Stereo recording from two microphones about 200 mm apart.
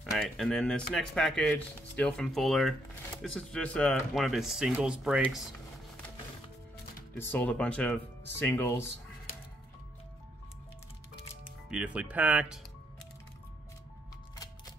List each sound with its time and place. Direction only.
0.0 s speech: centre (ahead or behind)
7.2 s speech: 10° left (ahead or behind)
11.7 s speech: 5° right (ahead or behind)